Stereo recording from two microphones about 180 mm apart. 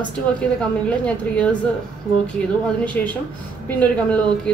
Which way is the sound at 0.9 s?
5° left (ahead or behind).